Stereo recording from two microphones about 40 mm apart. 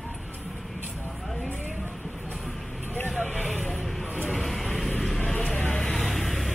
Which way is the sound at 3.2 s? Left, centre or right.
Left.